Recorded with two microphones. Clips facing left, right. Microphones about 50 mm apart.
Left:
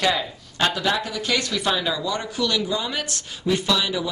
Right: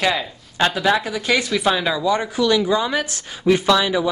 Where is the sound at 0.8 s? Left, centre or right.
Centre.